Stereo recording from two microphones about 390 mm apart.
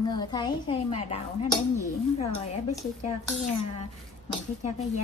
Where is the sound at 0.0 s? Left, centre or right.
Centre.